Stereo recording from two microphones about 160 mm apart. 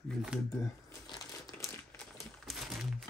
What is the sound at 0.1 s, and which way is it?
Speech, 5° right (ahead or behind).